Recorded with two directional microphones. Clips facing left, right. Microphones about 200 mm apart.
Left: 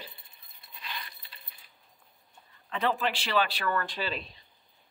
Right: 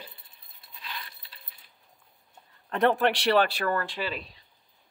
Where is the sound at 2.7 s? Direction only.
65° right (ahead or behind).